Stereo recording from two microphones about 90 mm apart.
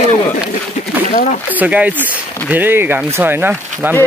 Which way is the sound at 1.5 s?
15° right (ahead or behind).